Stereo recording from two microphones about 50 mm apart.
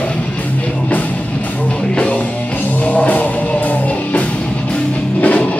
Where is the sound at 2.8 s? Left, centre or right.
Left.